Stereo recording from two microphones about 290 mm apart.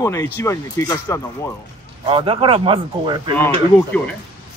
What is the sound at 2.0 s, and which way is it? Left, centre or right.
Speech, centre.